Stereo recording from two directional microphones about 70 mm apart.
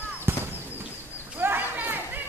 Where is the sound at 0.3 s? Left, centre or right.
Right.